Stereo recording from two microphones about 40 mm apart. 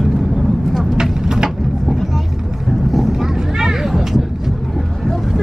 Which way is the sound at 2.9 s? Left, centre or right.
Centre.